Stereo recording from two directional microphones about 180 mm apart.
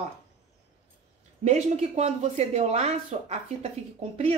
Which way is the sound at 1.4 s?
40° right (ahead or behind).